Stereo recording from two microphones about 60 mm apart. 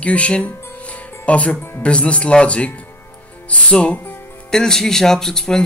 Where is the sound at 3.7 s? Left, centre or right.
Left.